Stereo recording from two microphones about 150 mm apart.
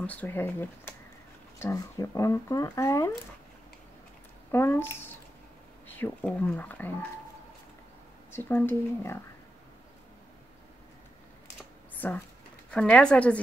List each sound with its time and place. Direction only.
0.0 s speech: 10° left (ahead or behind)
4.5 s speech: 15° left (ahead or behind)
8.3 s speech: 15° left (ahead or behind)
12.0 s speech: 10° left (ahead or behind)